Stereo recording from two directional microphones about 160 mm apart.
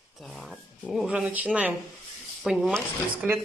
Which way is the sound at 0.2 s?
Centre (ahead or behind).